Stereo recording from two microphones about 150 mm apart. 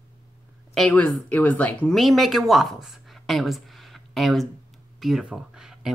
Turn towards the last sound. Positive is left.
turn(degrees=-5)  # may be behind; listen again after turning